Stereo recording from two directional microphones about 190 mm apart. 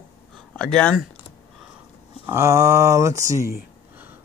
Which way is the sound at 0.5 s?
5° left (ahead or behind).